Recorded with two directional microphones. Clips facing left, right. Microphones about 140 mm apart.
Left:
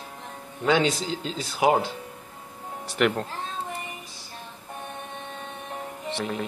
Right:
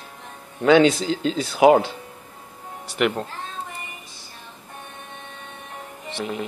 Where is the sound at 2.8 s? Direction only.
5° right (ahead or behind).